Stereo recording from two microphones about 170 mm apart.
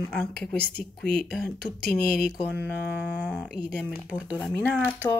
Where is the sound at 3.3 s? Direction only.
5° left (ahead or behind).